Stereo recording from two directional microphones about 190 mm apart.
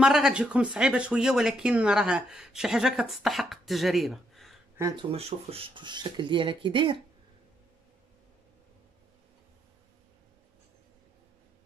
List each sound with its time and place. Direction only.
0.0 s speech: 5° right (ahead or behind)
4.7 s speech: 15° right (ahead or behind)
5.1 s speech: 30° right (ahead or behind)